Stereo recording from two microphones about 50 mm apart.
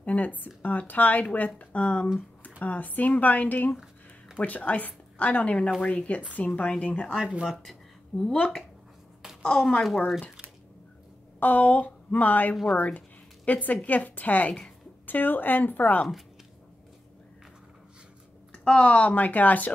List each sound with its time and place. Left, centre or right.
0.0 s speech: left
7.2 s speech: right
8.2 s a woman's voice: centre
11.3 s speech: left
18.5 s speech: centre; by 19.7 s left